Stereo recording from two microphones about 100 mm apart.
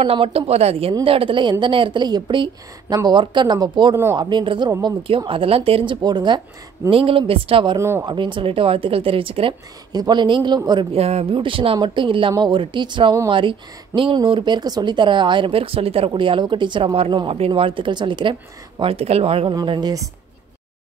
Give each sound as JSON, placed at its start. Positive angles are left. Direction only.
{"t": 0.0, "sound": "speech", "side_deg": -70}
{"t": 1.0, "sound": "a woman's voice", "side_deg": -65}
{"t": 3.9, "sound": "speech", "side_deg": -25}
{"t": 4.2, "sound": "a woman's voice", "side_deg": -45}
{"t": 5.0, "sound": "speech", "side_deg": -60}
{"t": 6.0, "sound": "a woman's voice", "side_deg": -45}
{"t": 6.9, "sound": "speech", "side_deg": -65}
{"t": 8.0, "sound": "speech", "side_deg": -50}
{"t": 9.9, "sound": "a woman's voice", "side_deg": -45}
{"t": 10.9, "sound": "speech", "side_deg": -90}
{"t": 11.3, "sound": "speech", "side_deg": -60}
{"t": 16.1, "sound": "a woman's voice", "side_deg": -55}
{"t": 18.8, "sound": "speech", "side_deg": -75}
{"t": 19.6, "sound": "a woman's voice", "side_deg": -45}